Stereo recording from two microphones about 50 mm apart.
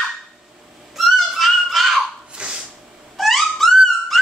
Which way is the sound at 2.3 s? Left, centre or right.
Centre.